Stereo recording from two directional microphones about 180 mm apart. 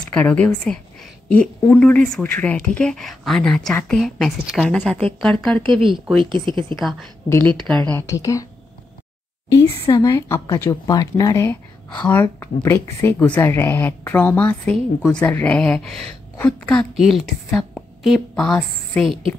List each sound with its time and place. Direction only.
0.0 s a woman's voice: 5° left (ahead or behind)
5.6 s speech: 25° right (ahead or behind)
6.7 s a woman's voice: centre (ahead or behind)
7.9 s a woman's voice: 20° left (ahead or behind)
9.5 s a woman's voice: 20° left (ahead or behind); by 19.1 s 5° left (ahead or behind)